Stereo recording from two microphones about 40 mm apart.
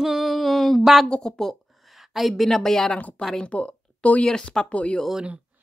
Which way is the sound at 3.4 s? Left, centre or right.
Left.